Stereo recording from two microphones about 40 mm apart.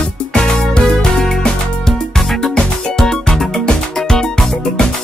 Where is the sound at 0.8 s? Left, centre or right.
Centre.